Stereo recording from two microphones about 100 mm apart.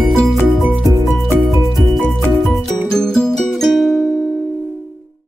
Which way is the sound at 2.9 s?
5° left (ahead or behind).